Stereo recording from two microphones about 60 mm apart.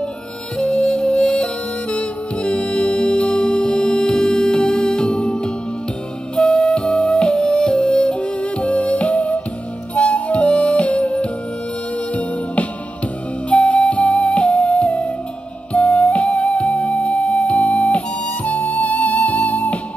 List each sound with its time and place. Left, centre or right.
0.6 s music: centre
13.5 s flute: left
15.7 s music: centre